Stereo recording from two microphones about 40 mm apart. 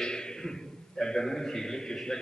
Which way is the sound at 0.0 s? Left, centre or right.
Centre.